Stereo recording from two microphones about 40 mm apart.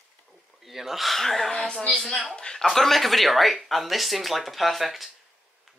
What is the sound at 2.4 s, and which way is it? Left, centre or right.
Speech, centre.